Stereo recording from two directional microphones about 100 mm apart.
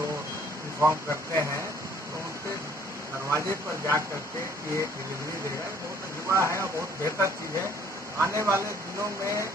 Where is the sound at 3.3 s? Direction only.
30° right (ahead or behind).